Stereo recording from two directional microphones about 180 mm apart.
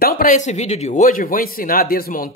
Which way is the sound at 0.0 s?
50° left (ahead or behind).